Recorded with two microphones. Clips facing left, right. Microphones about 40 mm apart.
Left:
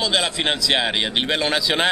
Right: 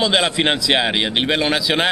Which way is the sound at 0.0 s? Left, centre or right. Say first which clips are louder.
Right 4 dB; centre.